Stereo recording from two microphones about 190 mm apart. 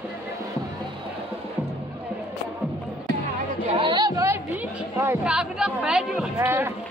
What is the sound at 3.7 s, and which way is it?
Chatter, 25° right (ahead or behind).